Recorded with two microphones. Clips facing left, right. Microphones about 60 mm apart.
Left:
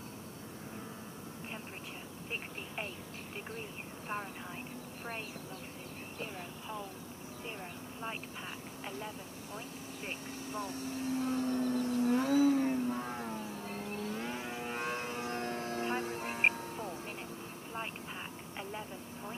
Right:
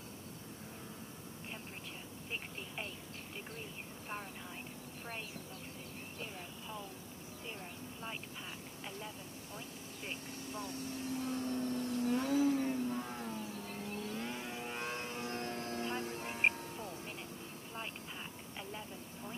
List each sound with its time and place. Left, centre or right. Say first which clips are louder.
10.0 s speech: left 2 dB; left
11.4 s vehicle: left 5 dB; centre
11.9 s vehicle: left 4 dB; centre
13.8 s vehicle: left 3 dB; left
14.1 s vehicle: left 3 dB; left
15.8 s music: left 4 dB; left